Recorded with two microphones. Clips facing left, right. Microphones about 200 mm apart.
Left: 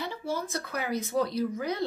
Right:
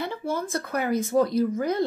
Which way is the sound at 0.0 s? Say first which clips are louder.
Right 4 dB; 55° right (ahead or behind).